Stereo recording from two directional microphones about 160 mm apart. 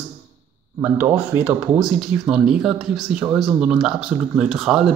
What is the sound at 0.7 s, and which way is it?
Speech, 15° right (ahead or behind).